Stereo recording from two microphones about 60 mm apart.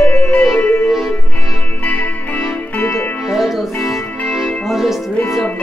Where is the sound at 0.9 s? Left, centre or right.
Centre.